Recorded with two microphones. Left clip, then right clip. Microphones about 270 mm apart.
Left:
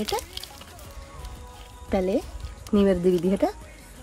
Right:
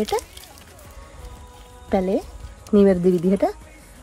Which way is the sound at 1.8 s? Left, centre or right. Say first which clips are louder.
Right 3 dB; centre.